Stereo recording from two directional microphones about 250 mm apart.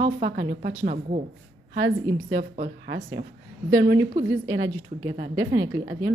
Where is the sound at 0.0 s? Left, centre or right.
Right.